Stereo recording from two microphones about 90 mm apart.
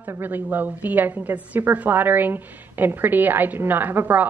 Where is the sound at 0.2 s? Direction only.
20° right (ahead or behind).